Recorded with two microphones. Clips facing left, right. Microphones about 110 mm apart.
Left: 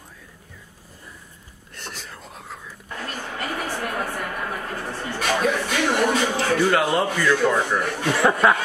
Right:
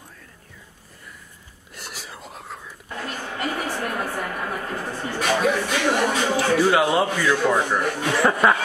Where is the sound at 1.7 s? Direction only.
5° right (ahead or behind).